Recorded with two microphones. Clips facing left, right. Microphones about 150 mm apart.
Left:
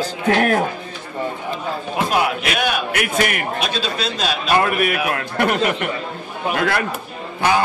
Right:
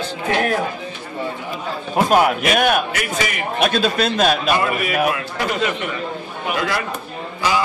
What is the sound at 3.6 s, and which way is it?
Speech, 55° right (ahead or behind).